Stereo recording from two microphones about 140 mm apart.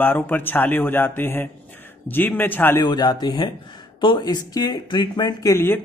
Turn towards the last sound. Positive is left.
turn(degrees=20)  # may be behind; listen again after turning